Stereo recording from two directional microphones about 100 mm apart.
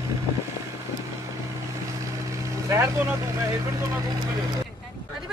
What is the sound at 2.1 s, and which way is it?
Speech, 30° right (ahead or behind).